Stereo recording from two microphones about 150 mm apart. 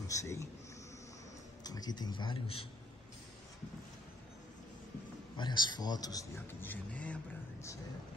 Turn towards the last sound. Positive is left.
turn(degrees=10)  # may be behind; listen again after turning